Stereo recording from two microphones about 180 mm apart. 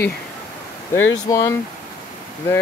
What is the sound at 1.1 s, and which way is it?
Speech, 15° left (ahead or behind).